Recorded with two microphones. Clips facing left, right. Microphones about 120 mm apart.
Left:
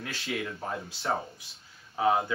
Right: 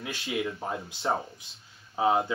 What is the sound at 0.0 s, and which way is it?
Speech, 20° right (ahead or behind).